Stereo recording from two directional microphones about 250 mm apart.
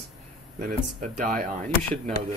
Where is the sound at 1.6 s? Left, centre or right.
Centre.